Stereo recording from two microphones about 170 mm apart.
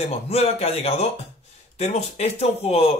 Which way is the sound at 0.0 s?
35° left (ahead or behind).